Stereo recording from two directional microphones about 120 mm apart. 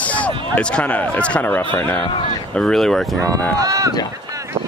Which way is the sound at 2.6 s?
5° left (ahead or behind).